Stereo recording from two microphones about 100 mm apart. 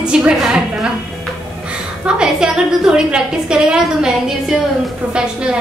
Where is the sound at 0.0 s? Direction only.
10° right (ahead or behind).